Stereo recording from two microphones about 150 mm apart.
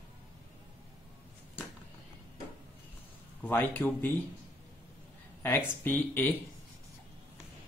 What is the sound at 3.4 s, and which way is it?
Speech, 10° left (ahead or behind).